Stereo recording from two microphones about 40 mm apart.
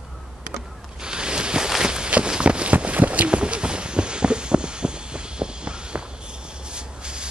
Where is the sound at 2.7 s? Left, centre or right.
Right.